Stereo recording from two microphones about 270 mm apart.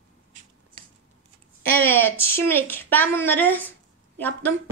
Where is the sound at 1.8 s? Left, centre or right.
Centre.